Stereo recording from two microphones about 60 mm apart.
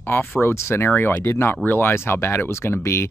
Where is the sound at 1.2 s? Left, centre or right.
Left.